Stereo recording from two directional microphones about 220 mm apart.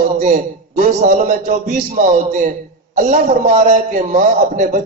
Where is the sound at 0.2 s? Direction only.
35° right (ahead or behind).